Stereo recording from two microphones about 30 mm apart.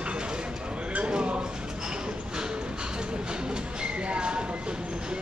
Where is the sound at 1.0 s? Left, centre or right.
Right.